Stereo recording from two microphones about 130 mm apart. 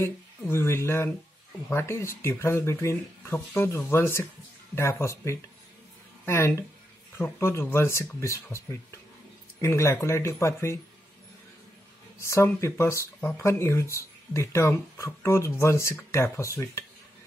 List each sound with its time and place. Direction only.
0.0 s speech: 20° left (ahead or behind)
12.2 s speech: 20° left (ahead or behind)